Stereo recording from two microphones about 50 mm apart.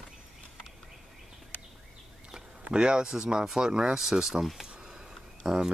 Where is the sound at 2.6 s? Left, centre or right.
Centre.